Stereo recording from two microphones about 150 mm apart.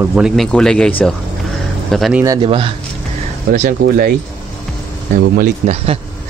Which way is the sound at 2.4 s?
35° right (ahead or behind).